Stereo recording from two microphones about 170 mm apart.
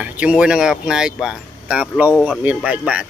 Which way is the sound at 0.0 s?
5° right (ahead or behind).